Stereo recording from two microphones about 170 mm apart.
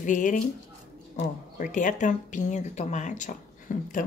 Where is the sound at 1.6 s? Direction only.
50° left (ahead or behind).